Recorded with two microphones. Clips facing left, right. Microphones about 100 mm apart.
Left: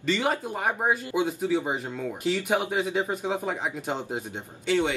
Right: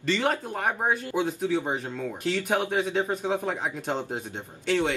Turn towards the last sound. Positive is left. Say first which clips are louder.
# left 1 dB
turn(degrees=0)  # may be behind; listen again after turning